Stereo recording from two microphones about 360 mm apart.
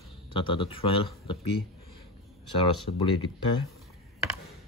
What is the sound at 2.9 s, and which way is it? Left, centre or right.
Speech, left.